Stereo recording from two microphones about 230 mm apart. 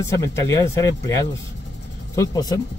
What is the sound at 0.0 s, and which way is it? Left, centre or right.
Speech, centre.